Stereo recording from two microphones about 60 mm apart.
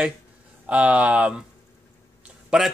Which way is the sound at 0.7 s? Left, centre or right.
Right.